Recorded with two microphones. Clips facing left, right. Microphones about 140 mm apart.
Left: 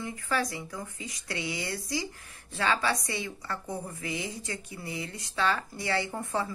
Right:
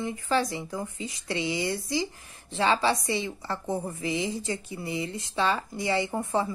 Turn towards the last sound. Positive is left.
turn(degrees=-20)  # may be behind; listen again after turning